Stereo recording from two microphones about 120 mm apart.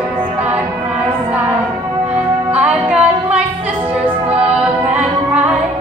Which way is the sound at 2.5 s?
10° right (ahead or behind).